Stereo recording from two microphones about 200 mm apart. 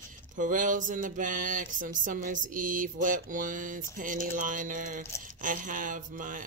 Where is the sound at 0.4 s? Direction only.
40° right (ahead or behind).